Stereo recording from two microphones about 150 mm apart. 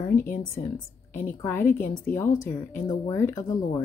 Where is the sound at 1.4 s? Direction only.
15° left (ahead or behind).